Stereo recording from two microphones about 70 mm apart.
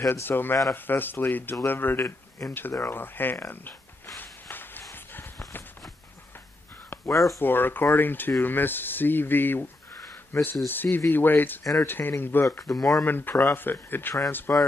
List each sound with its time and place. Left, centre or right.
0.1 s speech: left
4.2 s a sound: left
7.1 s speech: left
7.4 s speech: left
12.4 s speech: left
12.7 s speech: centre
13.0 s speech: left